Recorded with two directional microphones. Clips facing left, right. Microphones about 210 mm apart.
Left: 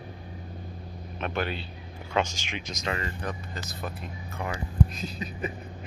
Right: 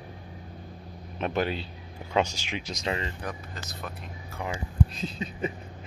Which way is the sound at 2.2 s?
35° right (ahead or behind).